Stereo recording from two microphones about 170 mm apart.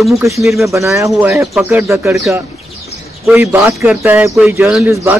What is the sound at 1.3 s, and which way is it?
Speech, centre (ahead or behind).